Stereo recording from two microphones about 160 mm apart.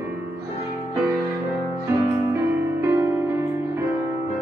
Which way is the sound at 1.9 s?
20° right (ahead or behind).